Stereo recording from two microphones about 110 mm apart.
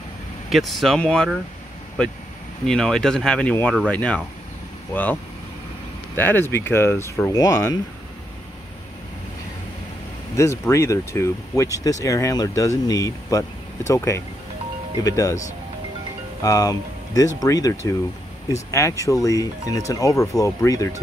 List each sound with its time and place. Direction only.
0.5 s speech: centre (ahead or behind)
2.6 s speech: 5° left (ahead or behind); by 7.8 s 30° left (ahead or behind)
10.3 s speech: 25° left (ahead or behind)
16.4 s speech: 35° left (ahead or behind)